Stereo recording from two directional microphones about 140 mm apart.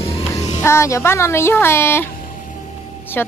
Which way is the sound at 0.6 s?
20° left (ahead or behind).